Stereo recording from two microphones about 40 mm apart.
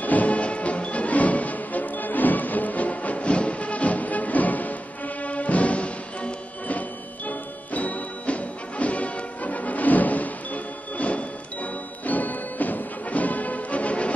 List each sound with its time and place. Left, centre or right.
0.0 s music: left